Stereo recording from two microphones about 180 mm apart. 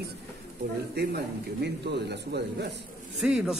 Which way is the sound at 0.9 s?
65° right (ahead or behind).